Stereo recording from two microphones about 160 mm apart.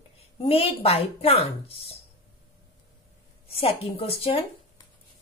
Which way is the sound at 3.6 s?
35° left (ahead or behind).